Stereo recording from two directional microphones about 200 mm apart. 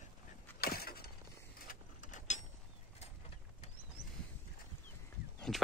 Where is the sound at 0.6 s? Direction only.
50° left (ahead or behind).